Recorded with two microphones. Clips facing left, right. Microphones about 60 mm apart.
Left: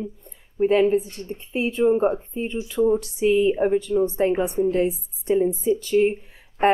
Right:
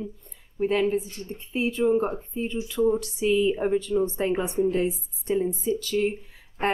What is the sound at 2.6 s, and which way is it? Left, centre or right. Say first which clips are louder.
Speech: left 3 dB; centre.